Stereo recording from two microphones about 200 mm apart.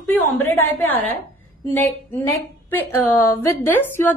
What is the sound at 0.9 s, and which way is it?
Speech, 10° left (ahead or behind).